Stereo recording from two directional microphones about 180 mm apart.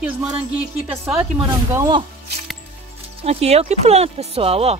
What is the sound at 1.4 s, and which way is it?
Speech, 20° right (ahead or behind).